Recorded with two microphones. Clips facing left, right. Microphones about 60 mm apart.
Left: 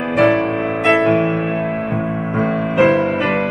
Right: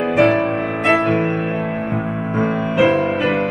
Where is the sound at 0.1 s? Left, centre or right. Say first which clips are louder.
Left 2 dB; centre.